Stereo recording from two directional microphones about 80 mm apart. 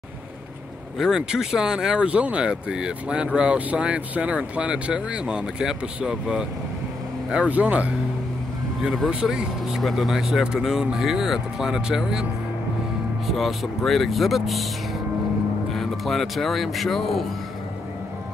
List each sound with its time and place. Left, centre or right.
0.9 s speech: centre
8.8 s speech: centre
13.3 s speech: centre
15.7 s speech: centre